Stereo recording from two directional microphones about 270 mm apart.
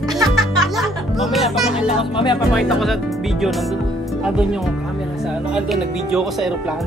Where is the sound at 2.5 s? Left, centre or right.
Centre.